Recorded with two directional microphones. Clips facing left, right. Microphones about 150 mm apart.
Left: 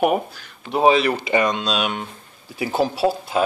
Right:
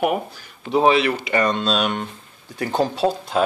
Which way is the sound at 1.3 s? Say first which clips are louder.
Right 1 dB; 15° left (ahead or behind).